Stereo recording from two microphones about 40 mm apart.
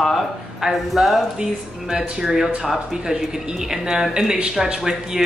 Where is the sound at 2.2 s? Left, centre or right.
Centre.